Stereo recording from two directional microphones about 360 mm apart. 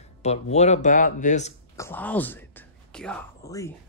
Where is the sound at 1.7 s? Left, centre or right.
Centre.